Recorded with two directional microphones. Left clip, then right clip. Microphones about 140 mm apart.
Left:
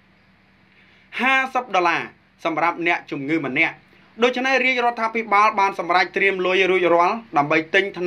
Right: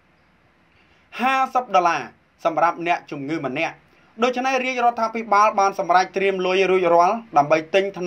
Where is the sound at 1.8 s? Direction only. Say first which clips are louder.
Even; 50° right (ahead or behind).